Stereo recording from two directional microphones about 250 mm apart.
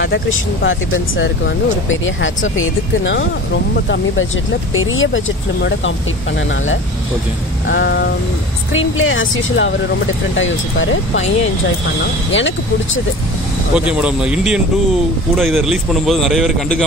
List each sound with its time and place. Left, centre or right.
0.0 s speech: left
4.7 s speech: left
7.6 s speech: left
12.3 s speech: left
13.7 s a man's voice: centre